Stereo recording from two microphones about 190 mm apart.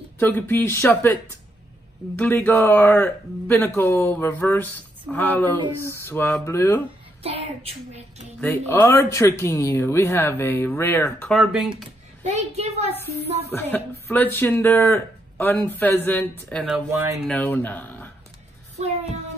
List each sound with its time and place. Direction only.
0.2 s speech: 10° left (ahead or behind)
2.1 s speech: 10° left (ahead or behind)
5.8 s speech: 15° right (ahead or behind)
6.0 s speech: 10° left (ahead or behind)
7.2 s a child's voice: 30° right (ahead or behind)
8.4 s speech: 10° left (ahead or behind)
11.2 s speech: centre (ahead or behind)
12.3 s a child's voice: 35° right (ahead or behind)
13.5 s speech: 10° left (ahead or behind); by 17.2 s 10° right (ahead or behind)
17.3 s speech: 10° left (ahead or behind)